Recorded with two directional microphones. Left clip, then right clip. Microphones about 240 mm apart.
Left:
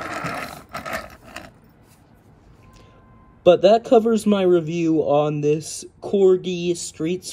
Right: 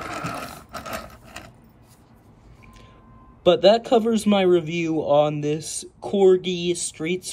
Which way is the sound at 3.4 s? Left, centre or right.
Centre.